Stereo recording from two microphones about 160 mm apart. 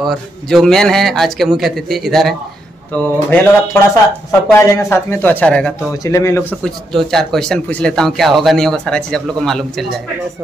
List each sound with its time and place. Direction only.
0.0 s speech: centre (ahead or behind)
3.0 s speech: 10° left (ahead or behind)
6.0 s speech: 20° left (ahead or behind)
6.6 s speech: centre (ahead or behind)